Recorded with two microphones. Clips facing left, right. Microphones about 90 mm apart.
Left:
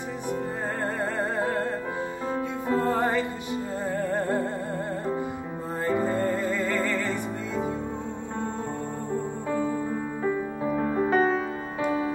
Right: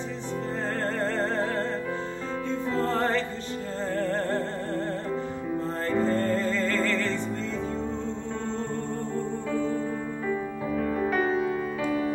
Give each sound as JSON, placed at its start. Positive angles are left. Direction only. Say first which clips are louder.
{"t": 0.9, "sound": "music", "louder": "right 1 dB", "side_deg": 10}
{"t": 2.7, "sound": "music", "louder": "left 3 dB", "side_deg": 15}
{"t": 5.9, "sound": "music", "louder": "even", "side_deg": 10}
{"t": 9.5, "sound": "music", "louder": "left 2 dB", "side_deg": 15}
{"t": 10.2, "sound": "music", "louder": "left 3 dB", "side_deg": 25}
{"t": 11.8, "sound": "music", "louder": "left 3 dB", "side_deg": 25}